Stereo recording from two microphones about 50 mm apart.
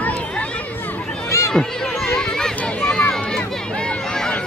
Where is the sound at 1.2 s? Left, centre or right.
Left.